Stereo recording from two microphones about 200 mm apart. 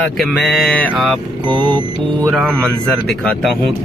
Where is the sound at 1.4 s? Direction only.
25° right (ahead or behind).